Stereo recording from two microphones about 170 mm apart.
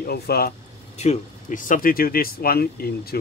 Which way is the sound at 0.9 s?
40° left (ahead or behind).